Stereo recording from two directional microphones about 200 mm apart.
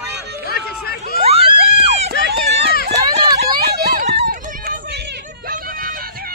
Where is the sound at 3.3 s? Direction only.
55° right (ahead or behind).